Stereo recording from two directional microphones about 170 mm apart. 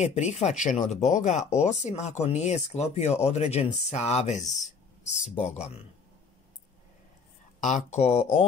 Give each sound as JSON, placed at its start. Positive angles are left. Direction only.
{"t": 0.0, "sound": "speech", "side_deg": 40}
{"t": 4.5, "sound": "speech", "side_deg": 0}
{"t": 5.0, "sound": "speech", "side_deg": 45}
{"t": 7.6, "sound": "speech", "side_deg": 45}